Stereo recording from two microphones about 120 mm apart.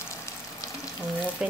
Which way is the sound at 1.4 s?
5° right (ahead or behind).